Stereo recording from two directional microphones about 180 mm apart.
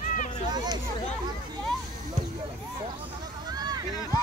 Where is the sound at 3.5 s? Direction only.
20° right (ahead or behind).